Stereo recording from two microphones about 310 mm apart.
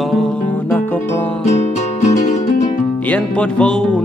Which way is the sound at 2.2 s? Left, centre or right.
Left.